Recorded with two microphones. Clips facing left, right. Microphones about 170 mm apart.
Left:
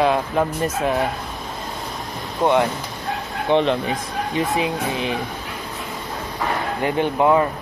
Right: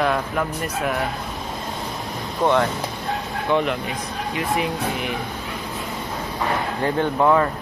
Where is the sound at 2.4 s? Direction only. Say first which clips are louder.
Left 1 dB; 15° left (ahead or behind).